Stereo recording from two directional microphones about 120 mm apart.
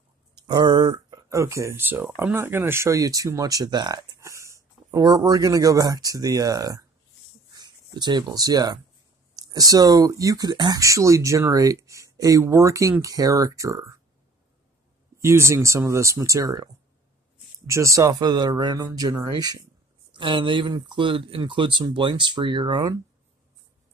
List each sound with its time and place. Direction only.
0.3 s speech: 35° right (ahead or behind)
4.2 s speech: 25° right (ahead or behind)
15.1 s speech: 20° right (ahead or behind)